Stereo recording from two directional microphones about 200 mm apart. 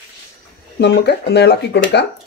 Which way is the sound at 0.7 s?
55° left (ahead or behind).